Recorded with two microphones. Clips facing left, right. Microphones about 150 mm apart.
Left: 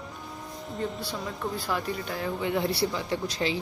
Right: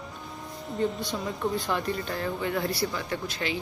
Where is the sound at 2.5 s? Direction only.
25° left (ahead or behind).